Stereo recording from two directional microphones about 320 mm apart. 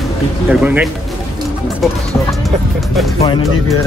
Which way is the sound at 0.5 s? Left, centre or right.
Centre.